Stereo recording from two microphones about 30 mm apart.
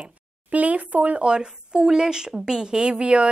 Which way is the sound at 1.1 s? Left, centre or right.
Right.